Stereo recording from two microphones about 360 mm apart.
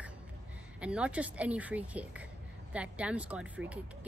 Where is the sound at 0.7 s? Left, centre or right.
Centre.